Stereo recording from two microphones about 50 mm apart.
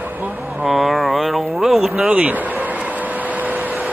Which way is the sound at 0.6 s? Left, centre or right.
Centre.